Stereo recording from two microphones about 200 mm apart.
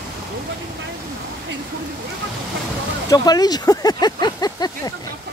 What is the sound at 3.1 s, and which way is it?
Speech, 20° left (ahead or behind).